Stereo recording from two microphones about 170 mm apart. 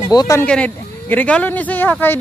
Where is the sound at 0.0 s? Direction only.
20° left (ahead or behind).